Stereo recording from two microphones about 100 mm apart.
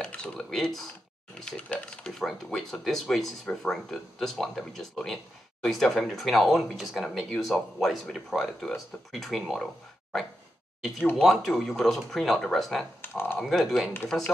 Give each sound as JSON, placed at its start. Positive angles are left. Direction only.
{"t": 0.0, "sound": "speech", "side_deg": 10}
{"t": 11.1, "sound": "speech", "side_deg": 0}
{"t": 13.0, "sound": "speech", "side_deg": 20}
{"t": 13.4, "sound": "speech", "side_deg": 0}